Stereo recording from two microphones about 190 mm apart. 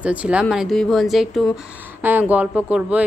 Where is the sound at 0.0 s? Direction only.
5° right (ahead or behind).